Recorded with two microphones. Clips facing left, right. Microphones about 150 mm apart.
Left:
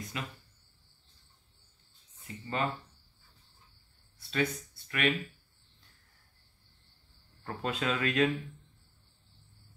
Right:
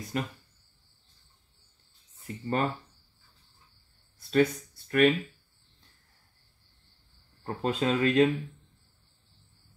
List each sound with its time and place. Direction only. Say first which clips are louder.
0.1 s speech: right 9 dB; 45° right (ahead or behind)
2.2 s speech: right 5 dB; 45° right (ahead or behind)
4.3 s speech: right 8 dB; 40° right (ahead or behind)
7.4 s speech: right 5 dB; 30° right (ahead or behind)